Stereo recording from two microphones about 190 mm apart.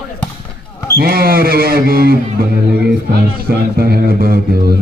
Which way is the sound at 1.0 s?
50° right (ahead or behind).